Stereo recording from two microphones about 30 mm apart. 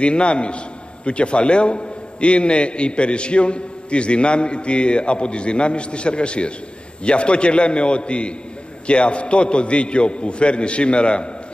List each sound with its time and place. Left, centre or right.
0.0 s a man's voice: left